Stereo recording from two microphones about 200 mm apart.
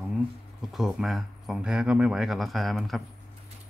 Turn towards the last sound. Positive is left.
turn(degrees=0)  # may be behind; listen again after turning